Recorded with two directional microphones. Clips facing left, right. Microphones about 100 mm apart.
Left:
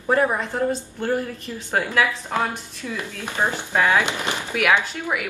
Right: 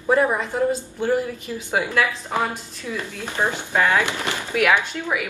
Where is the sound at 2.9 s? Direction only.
15° left (ahead or behind).